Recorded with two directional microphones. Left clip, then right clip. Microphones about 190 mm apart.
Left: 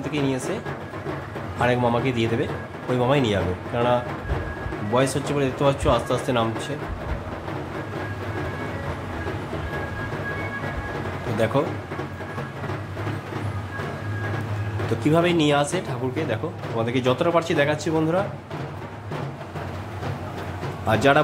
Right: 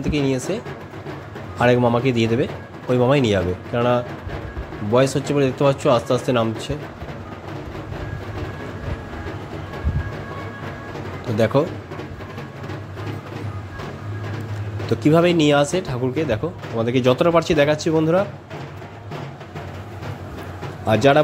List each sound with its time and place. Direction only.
0.0 s speech: 25° right (ahead or behind)
1.6 s speech: 25° right (ahead or behind)
11.3 s speech: 25° right (ahead or behind)
14.9 s speech: 25° right (ahead or behind)
20.8 s speech: 20° right (ahead or behind)